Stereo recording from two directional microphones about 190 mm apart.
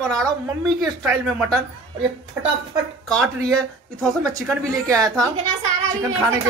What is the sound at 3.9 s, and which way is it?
A woman's voice, 15° right (ahead or behind).